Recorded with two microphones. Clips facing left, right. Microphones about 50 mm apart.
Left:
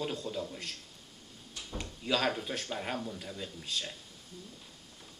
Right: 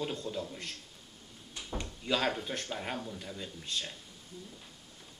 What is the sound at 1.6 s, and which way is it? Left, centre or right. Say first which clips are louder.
Drawer open or close: right 1 dB; centre.